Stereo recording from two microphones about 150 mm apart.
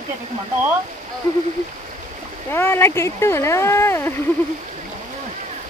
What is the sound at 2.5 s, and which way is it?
Speech, 15° left (ahead or behind).